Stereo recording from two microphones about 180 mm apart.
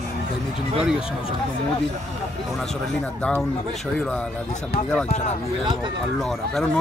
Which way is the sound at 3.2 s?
5° left (ahead or behind).